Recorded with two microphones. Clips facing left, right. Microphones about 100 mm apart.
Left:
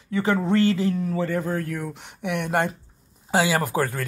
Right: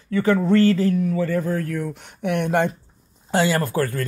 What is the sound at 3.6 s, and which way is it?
Speech, 15° left (ahead or behind).